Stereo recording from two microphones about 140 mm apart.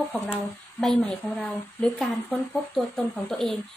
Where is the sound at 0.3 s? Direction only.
Centre (ahead or behind).